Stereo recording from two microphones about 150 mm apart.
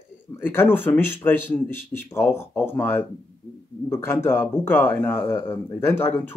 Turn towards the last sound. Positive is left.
turn(degrees=15)  # may be behind; listen again after turning